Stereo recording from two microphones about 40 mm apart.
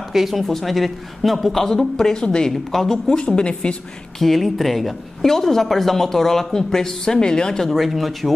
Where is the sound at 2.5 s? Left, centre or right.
Centre.